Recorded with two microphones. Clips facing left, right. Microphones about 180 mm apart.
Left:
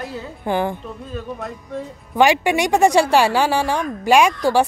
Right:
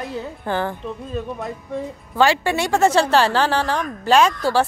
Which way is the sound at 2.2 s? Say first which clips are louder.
Left 2 dB; 15° left (ahead or behind).